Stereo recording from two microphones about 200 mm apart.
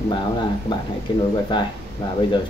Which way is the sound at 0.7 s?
20° left (ahead or behind).